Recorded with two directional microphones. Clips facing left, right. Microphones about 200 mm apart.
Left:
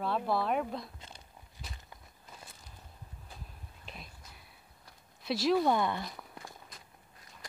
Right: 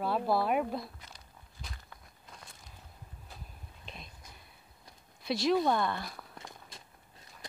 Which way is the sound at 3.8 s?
5° left (ahead or behind).